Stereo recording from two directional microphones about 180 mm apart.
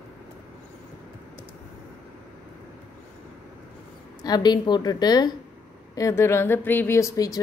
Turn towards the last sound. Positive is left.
turn(degrees=20)  # may be behind; listen again after turning